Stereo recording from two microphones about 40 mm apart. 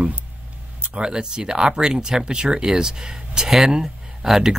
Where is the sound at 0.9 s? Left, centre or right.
Centre.